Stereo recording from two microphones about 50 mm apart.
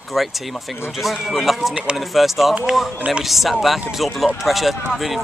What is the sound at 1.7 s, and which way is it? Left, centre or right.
Speech, right.